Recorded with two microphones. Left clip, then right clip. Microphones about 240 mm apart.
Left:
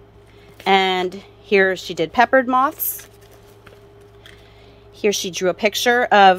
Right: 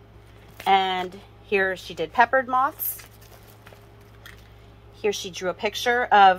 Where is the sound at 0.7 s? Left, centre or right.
Left.